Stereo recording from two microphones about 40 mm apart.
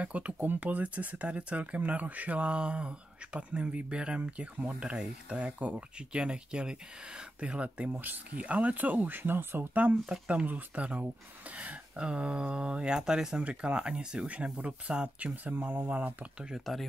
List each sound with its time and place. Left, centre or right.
0.0 s speech: right
0.4 s speech: right
6.1 s speech: right
7.9 s speech: right
10.4 s speech: right; by 13.4 s centre
13.4 s speech: right
16.7 s speech: centre